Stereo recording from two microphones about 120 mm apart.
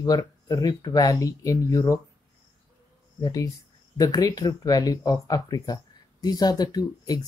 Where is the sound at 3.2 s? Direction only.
30° left (ahead or behind).